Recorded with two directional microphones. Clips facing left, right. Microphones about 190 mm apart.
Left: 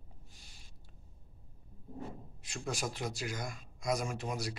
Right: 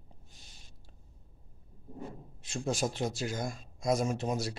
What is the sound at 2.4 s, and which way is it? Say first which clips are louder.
A man's voice: right 6 dB; 25° right (ahead or behind).